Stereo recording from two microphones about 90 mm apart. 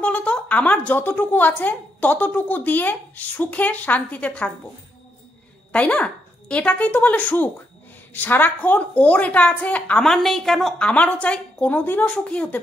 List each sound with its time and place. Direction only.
0.0 s a woman's voice: 15° left (ahead or behind)
5.7 s a woman's voice: 15° left (ahead or behind)
10.0 s a woman's voice: 5° left (ahead or behind)
10.9 s a woman's voice: 15° left (ahead or behind)